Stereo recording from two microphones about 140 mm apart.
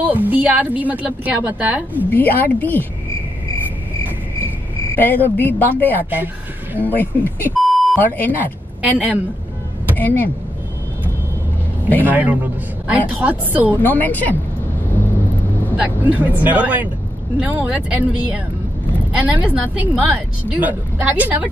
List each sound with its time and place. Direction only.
0.0 s a woman's voice: 10° right (ahead or behind)
2.0 s a woman's voice: 10° left (ahead or behind)
4.9 s a woman's voice: 15° left (ahead or behind)
6.0 s speech: 15° right (ahead or behind)
6.8 s a woman's voice: 10° left (ahead or behind)
7.6 s beep: centre (ahead or behind)
8.0 s a woman's voice: 10° left (ahead or behind)
9.9 s a woman's voice: 15° left (ahead or behind)
12.0 s a woman's voice: 10° right (ahead or behind)
13.8 s a woman's voice: 10° left (ahead or behind)
15.7 s a woman's voice: 10° right (ahead or behind)